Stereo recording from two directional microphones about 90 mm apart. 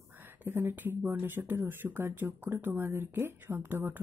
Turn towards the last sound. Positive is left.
turn(degrees=-25)  # may be behind; listen again after turning